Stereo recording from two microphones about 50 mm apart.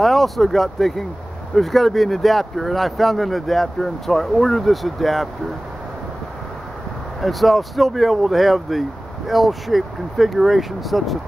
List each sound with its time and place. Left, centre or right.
0.0 s speech: centre
7.2 s speech: centre